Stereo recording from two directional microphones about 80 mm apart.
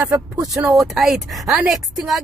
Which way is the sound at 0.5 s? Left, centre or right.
Centre.